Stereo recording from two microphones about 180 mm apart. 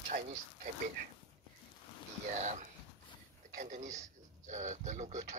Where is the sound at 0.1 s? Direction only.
50° right (ahead or behind).